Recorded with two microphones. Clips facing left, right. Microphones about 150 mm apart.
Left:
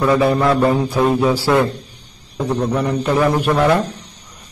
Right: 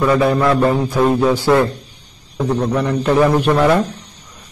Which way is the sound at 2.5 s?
10° left (ahead or behind).